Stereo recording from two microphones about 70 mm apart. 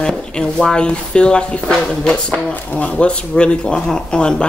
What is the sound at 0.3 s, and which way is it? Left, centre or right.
Speech, centre.